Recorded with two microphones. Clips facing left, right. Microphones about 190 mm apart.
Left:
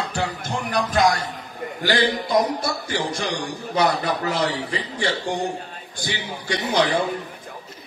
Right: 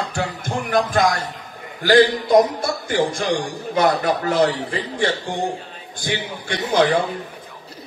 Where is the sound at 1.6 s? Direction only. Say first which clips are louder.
Left 9 dB; 50° left (ahead or behind).